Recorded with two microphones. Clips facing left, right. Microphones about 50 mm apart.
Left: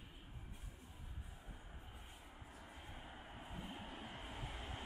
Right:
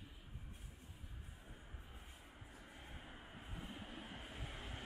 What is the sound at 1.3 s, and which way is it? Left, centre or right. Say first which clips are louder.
Vehicle: left 1 dB; centre.